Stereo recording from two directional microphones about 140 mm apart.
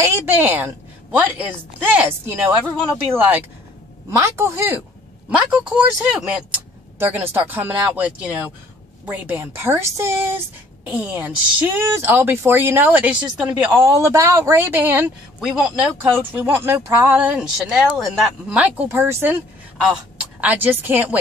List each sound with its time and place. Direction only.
0.0 s speech: 15° right (ahead or behind)
5.3 s speech: 5° right (ahead or behind)
13.7 s speech: 20° right (ahead or behind)
20.3 s speech: 10° right (ahead or behind)